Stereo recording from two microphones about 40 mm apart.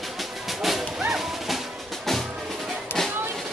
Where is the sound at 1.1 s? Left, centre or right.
Centre.